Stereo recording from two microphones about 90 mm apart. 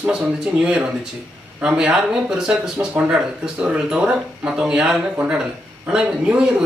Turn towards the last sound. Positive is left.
turn(degrees=-10)  # may be behind; listen again after turning